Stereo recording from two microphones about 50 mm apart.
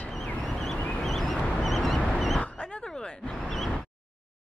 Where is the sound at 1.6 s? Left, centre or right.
Centre.